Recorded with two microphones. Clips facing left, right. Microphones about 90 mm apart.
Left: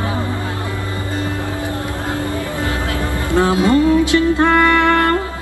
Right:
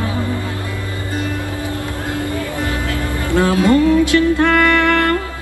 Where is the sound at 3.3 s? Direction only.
20° left (ahead or behind).